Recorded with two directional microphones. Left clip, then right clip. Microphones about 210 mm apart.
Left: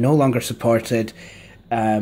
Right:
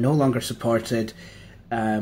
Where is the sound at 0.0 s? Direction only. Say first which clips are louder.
Left 4 dB; 35° left (ahead or behind).